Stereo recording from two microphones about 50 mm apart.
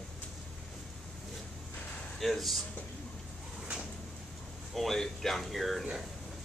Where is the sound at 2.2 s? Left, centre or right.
Centre.